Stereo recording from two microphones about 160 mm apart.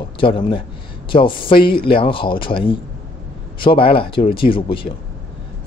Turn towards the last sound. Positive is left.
turn(degrees=35)  # may be behind; listen again after turning